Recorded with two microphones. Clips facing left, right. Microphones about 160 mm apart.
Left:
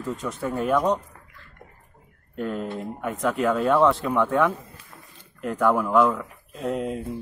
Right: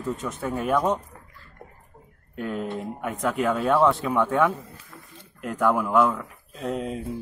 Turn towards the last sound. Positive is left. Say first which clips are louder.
# left 2 dB
turn(degrees=0)  # may be behind; listen again after turning